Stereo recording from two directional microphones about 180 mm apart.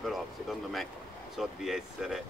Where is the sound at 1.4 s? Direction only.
Centre (ahead or behind).